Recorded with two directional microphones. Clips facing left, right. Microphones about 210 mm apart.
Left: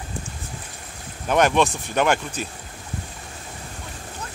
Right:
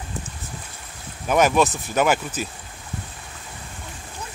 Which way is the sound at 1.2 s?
5° right (ahead or behind).